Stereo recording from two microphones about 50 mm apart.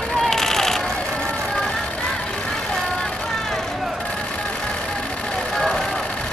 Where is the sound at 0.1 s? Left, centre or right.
Centre.